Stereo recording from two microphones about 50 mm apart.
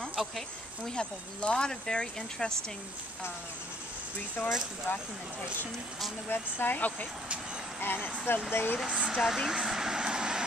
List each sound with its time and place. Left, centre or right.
0.8 s speech: centre
4.4 s speech: centre
6.3 s speech: left
7.8 s speech: left
8.8 s speech: right
9.2 s vehicle: centre